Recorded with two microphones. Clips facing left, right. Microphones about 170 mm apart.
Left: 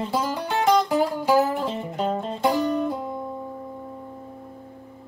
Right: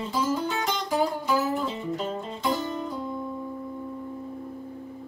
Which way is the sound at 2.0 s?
60° left (ahead or behind).